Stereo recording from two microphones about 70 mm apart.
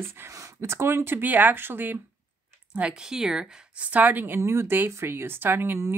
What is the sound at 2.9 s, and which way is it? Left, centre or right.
Speech, centre.